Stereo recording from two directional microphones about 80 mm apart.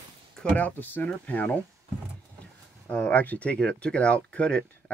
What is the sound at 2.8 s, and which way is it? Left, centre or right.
Speech, centre.